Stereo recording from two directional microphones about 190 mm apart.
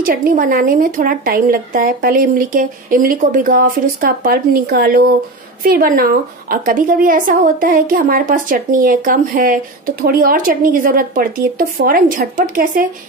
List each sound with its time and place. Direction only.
0.0 s a woman's voice: 45° right (ahead or behind)